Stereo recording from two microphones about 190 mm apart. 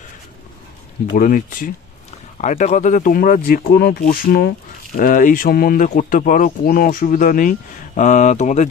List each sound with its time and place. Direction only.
1.1 s speech: 45° left (ahead or behind)